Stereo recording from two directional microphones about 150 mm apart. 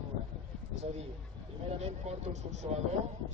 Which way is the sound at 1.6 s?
45° right (ahead or behind).